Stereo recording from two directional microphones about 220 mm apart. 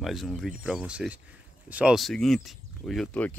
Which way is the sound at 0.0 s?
Centre (ahead or behind).